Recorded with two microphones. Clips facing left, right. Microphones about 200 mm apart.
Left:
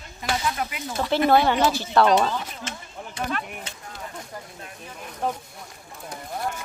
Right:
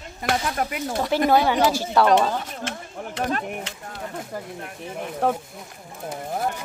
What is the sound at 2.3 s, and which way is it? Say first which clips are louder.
Speech: right 3 dB; 60° right (ahead or behind).